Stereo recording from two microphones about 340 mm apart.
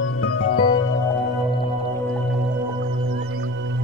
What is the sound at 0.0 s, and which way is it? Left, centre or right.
Music, left.